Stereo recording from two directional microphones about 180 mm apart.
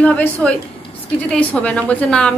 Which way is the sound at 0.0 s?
5° left (ahead or behind).